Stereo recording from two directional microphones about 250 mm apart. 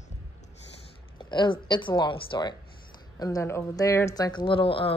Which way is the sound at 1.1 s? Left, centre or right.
Centre.